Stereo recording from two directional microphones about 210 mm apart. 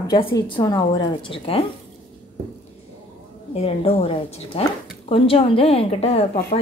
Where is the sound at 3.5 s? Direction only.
30° left (ahead or behind).